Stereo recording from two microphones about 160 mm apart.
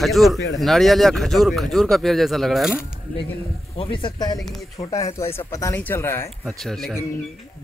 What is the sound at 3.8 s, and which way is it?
Speech, 30° left (ahead or behind).